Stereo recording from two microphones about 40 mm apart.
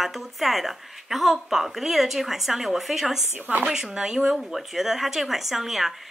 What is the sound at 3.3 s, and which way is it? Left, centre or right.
Speech, right.